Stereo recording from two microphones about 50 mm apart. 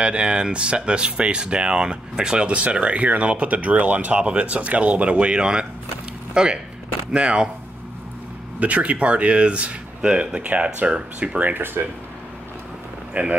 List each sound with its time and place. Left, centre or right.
0.0 s speech: right
8.5 s speech: right
11.5 s speech: right
13.1 s speech: right